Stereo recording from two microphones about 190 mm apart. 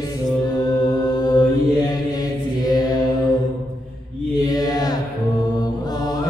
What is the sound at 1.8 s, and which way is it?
Chant, 20° left (ahead or behind).